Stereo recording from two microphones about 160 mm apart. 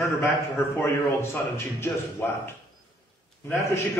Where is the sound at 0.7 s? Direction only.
15° left (ahead or behind).